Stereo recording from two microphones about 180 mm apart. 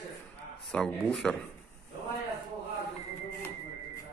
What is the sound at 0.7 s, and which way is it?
Speech, 5° left (ahead or behind).